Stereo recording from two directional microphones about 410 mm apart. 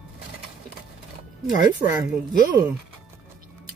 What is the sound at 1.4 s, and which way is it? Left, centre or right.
Speech, centre.